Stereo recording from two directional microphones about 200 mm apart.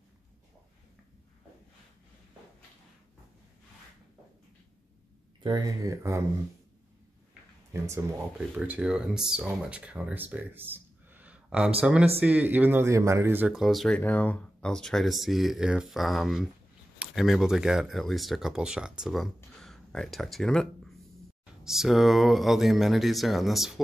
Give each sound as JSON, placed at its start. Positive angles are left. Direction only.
{"t": 5.4, "sound": "speech", "side_deg": -20}
{"t": 7.9, "sound": "speech", "side_deg": -10}